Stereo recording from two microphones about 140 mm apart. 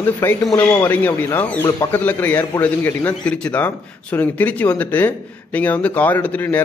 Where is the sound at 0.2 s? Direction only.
15° left (ahead or behind).